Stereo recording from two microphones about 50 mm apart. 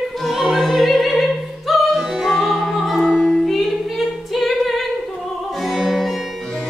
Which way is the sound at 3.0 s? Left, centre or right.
Centre.